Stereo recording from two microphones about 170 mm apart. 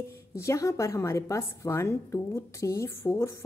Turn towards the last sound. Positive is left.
turn(degrees=15)  # may be behind; listen again after turning